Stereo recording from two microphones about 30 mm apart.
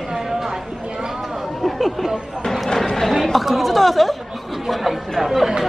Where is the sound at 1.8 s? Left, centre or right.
Centre.